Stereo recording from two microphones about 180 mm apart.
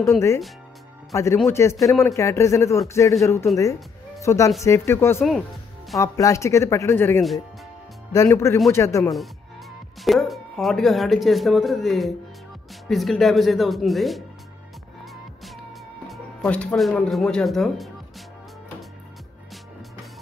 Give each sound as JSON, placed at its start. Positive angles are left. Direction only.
{"t": 1.1, "sound": "speech", "side_deg": 15}
{"t": 10.0, "sound": "speech", "side_deg": 0}
{"t": 16.1, "sound": "speech", "side_deg": 5}